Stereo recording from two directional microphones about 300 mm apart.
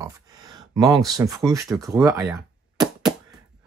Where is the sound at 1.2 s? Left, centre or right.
Centre.